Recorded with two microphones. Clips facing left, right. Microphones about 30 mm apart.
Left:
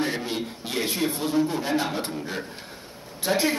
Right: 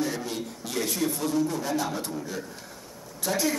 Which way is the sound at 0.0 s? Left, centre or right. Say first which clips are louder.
Left 3 dB; left.